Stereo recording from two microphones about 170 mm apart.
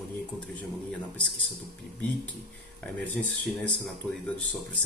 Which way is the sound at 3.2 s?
5° left (ahead or behind).